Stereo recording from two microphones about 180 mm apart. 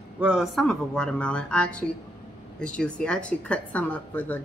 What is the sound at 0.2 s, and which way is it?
Speech, 5° right (ahead or behind).